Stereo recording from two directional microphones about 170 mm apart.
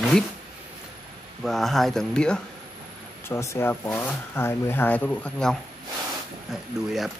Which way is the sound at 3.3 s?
15° left (ahead or behind).